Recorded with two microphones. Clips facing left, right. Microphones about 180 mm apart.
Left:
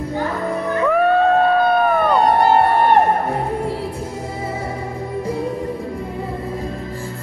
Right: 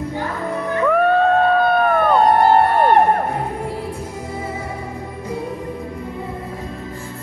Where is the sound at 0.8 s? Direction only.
Centre (ahead or behind).